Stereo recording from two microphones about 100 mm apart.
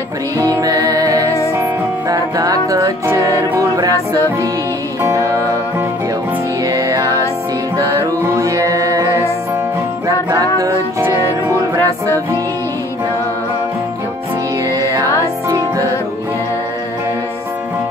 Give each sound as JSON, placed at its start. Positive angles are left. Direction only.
{"t": 0.4, "sound": "music", "side_deg": -35}
{"t": 5.0, "sound": "music", "side_deg": -35}
{"t": 6.6, "sound": "music", "side_deg": -35}
{"t": 10.0, "sound": "music", "side_deg": -35}
{"t": 14.7, "sound": "music", "side_deg": -40}